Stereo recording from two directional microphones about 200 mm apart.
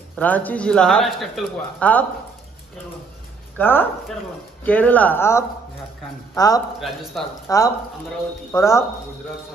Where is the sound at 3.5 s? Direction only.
10° left (ahead or behind).